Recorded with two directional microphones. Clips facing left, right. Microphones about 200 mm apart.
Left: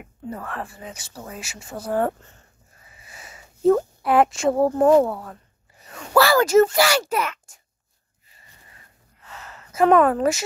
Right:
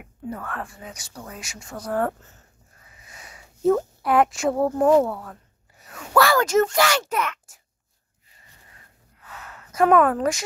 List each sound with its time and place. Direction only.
0.0 s speech: centre (ahead or behind)
1.9 s speech: 25° left (ahead or behind)
2.1 s speech: 5° right (ahead or behind)
2.9 s a sound: 5° left (ahead or behind)
5.1 s speech: 5° left (ahead or behind)
9.3 s a sound: 5° right (ahead or behind)